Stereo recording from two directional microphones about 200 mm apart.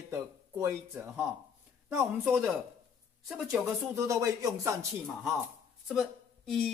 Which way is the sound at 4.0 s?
15° right (ahead or behind).